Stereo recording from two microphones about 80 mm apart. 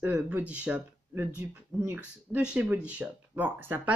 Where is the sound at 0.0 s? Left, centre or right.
Centre.